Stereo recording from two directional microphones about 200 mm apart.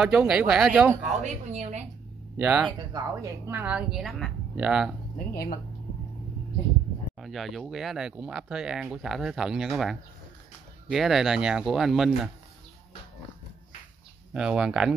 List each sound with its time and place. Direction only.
0.0 s speech: 5° right (ahead or behind)
1.2 s a woman's voice: 35° right (ahead or behind)
2.3 s speech: 5° right (ahead or behind)
2.8 s speech: 20° right (ahead or behind); by 4.9 s 5° right (ahead or behind)
5.3 s speech: 50° left (ahead or behind)
7.2 s speech: centre (ahead or behind)
14.3 s speech: 5° right (ahead or behind)